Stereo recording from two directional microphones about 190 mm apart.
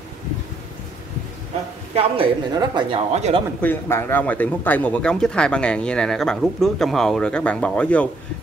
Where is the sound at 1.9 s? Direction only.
30° right (ahead or behind).